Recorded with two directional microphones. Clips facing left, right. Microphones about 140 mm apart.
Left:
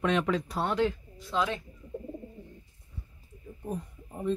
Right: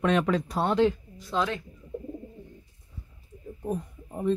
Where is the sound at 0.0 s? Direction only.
45° right (ahead or behind).